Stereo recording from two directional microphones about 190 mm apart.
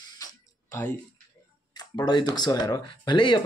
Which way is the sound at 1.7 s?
20° left (ahead or behind).